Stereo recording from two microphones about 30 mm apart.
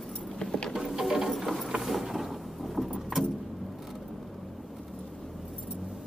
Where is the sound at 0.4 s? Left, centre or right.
Left.